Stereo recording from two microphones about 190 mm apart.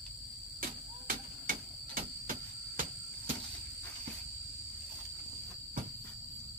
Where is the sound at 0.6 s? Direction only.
50° right (ahead or behind).